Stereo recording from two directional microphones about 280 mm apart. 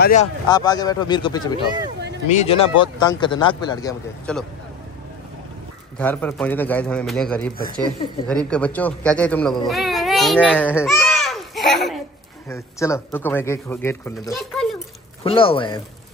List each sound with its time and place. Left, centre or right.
0.0 s speech: left
0.5 s a man's voice: centre
4.3 s a man's voice: centre
5.9 s a man's voice: centre
15.2 s speech: centre